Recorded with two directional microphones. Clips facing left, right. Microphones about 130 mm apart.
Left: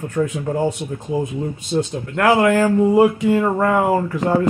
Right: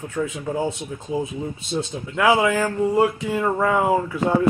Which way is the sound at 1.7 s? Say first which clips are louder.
Left 6 dB; 15° left (ahead or behind).